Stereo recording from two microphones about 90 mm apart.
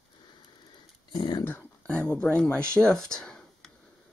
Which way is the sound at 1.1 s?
50° left (ahead or behind).